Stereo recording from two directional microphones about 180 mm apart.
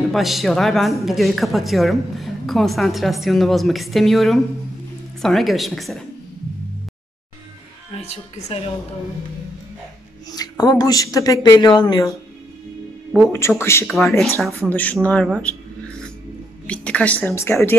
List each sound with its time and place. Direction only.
0.1 s a woman's voice: centre (ahead or behind)
7.9 s speech: 35° left (ahead or behind)
10.3 s speech: 20° left (ahead or behind)
13.3 s speech: 15° left (ahead or behind)
13.9 s a woman's voice: centre (ahead or behind)
16.6 s a woman's voice: 5° left (ahead or behind)